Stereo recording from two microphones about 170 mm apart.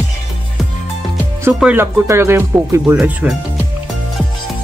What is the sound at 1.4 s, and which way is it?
Music, 15° right (ahead or behind).